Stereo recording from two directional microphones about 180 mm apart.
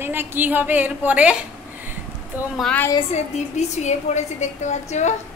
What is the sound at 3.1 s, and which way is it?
A woman's voice, 40° left (ahead or behind).